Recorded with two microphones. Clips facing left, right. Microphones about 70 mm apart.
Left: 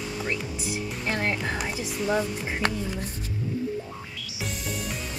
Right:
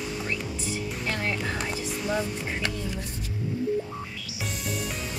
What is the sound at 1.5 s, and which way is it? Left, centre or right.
Speech, centre.